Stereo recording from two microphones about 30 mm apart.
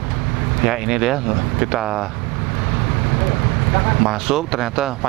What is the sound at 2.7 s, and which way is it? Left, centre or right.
Vehicle, centre.